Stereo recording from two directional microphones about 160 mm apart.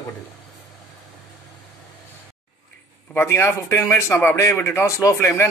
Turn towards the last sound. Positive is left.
turn(degrees=15)  # may be behind; listen again after turning